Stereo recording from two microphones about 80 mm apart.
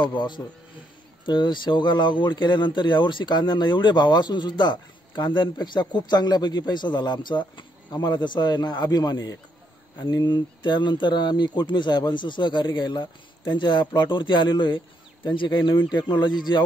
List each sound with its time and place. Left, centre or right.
0.0 s speech: left
10.6 s speech: left